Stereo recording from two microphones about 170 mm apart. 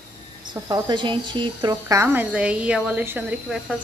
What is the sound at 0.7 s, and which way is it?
Speech, 25° right (ahead or behind).